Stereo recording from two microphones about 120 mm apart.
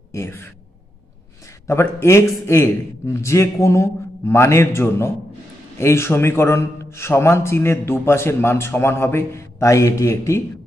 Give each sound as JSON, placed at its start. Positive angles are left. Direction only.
{"t": 0.1, "sound": "a man's voice", "side_deg": 20}
{"t": 1.7, "sound": "a man's voice", "side_deg": 20}